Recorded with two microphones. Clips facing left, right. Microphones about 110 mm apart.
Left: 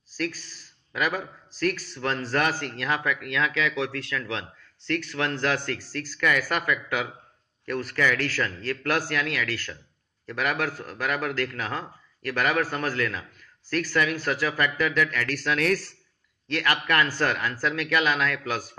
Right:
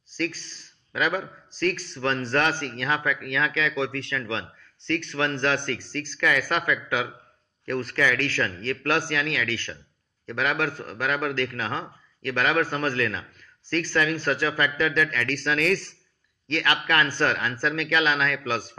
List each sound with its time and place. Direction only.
0.1 s speech: 5° left (ahead or behind)
3.4 s speech: 30° right (ahead or behind)
5.5 s speech: 5° left (ahead or behind)